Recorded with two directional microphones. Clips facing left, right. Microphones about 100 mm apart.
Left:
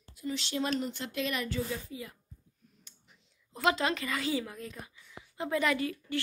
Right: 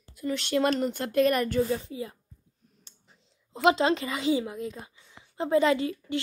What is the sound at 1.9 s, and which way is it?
A woman's voice, 30° right (ahead or behind).